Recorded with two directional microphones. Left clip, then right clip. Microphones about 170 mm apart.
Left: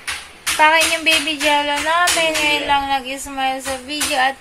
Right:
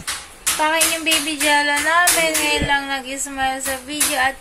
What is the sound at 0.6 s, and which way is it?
Child singing, 25° left (ahead or behind).